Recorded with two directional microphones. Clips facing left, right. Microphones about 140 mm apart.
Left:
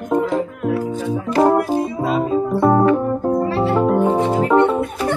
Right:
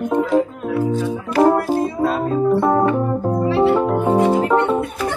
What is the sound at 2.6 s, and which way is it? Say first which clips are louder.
Music: left 2 dB; centre (ahead or behind).